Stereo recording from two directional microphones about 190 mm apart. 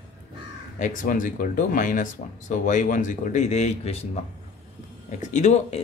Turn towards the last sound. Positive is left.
turn(degrees=35)  # may be behind; listen again after turning